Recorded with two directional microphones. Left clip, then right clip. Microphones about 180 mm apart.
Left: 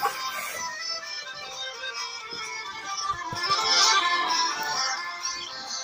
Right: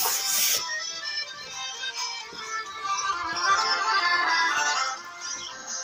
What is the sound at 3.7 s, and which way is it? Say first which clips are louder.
Music: left 2 dB; 20° left (ahead or behind).